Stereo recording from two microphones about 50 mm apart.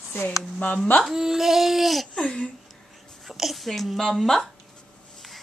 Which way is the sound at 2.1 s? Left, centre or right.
Centre.